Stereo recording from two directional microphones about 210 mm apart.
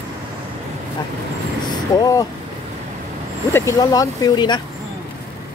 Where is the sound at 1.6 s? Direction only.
20° left (ahead or behind).